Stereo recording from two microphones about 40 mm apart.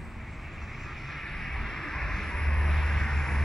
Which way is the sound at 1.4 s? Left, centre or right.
Centre.